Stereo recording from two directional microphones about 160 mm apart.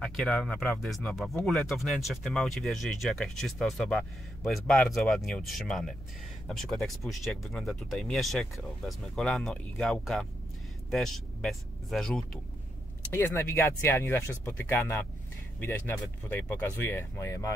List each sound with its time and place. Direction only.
0.0 s speech: 5° left (ahead or behind)
13.1 s speech: 15° left (ahead or behind)
16.3 s speech: 10° left (ahead or behind)